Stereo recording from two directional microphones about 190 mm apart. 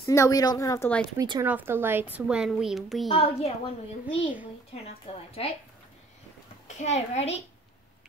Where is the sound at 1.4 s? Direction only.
10° right (ahead or behind).